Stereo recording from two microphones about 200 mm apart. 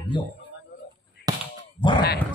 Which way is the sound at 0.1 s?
25° left (ahead or behind).